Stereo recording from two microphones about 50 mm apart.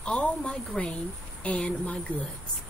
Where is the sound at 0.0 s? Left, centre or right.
Left.